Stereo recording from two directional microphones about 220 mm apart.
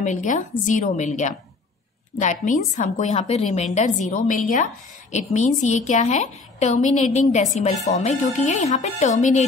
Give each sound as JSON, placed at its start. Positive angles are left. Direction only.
{"t": 0.0, "sound": "a woman's voice", "side_deg": 35}